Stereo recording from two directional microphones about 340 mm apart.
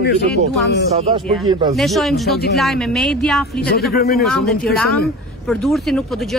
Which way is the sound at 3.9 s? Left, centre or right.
Left.